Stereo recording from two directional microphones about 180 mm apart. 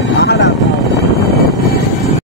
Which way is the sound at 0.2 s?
65° left (ahead or behind).